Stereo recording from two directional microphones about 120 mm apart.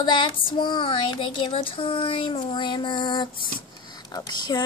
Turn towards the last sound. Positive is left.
turn(degrees=35)  # may be behind; listen again after turning